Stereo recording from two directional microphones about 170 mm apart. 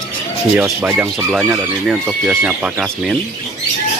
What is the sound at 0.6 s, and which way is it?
Speech, 10° right (ahead or behind).